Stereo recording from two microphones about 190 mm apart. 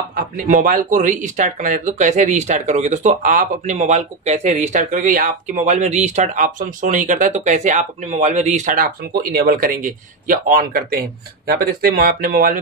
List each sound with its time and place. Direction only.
0.1 s speech: 45° right (ahead or behind)